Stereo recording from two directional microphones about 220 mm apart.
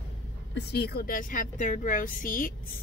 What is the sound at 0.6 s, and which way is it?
Speech, 45° left (ahead or behind).